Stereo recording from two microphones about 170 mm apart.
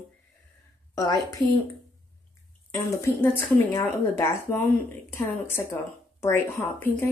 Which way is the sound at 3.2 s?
15° left (ahead or behind).